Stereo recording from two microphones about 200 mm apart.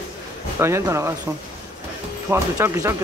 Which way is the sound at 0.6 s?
15° right (ahead or behind).